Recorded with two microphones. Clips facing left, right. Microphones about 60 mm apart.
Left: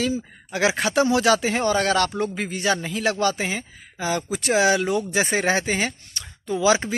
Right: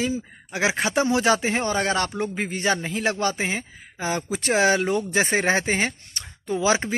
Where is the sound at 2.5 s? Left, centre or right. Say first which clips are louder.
Even; right.